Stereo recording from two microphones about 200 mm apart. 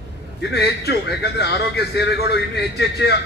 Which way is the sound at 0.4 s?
55° left (ahead or behind).